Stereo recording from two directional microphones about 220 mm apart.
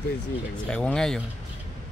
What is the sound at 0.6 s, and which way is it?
Speech, 5° left (ahead or behind).